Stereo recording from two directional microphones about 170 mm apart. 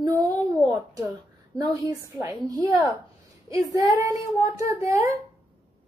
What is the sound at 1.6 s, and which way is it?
A woman's voice, 20° right (ahead or behind).